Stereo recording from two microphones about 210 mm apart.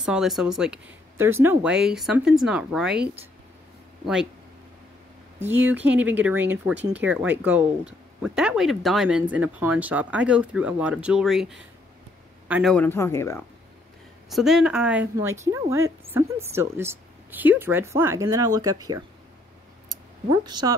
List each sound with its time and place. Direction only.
0.0 s speech: centre (ahead or behind)
5.4 s a man's voice: 10° right (ahead or behind)
12.7 s speech: 10° left (ahead or behind)
14.3 s speech: centre (ahead or behind); by 19.0 s 15° right (ahead or behind)
20.2 s speech: 20° right (ahead or behind)